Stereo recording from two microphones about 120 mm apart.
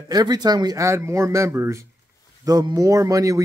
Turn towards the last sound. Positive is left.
turn(degrees=-25)  # may be behind; listen again after turning